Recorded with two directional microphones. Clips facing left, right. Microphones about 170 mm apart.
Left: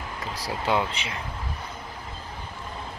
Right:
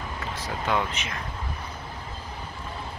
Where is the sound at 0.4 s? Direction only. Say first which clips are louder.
Left 2 dB; 30° left (ahead or behind).